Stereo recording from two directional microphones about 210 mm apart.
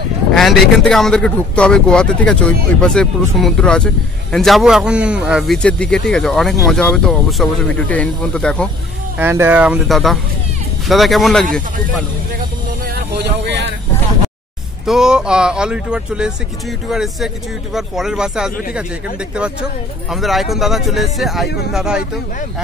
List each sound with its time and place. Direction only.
0.3 s a man's voice: centre (ahead or behind)
9.2 s a man's voice: 10° right (ahead or behind)
12.8 s vehicle: 50° right (ahead or behind)
14.9 s a man's voice: 5° right (ahead or behind)